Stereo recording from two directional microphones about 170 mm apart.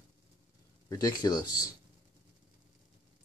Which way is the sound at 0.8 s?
20° left (ahead or behind).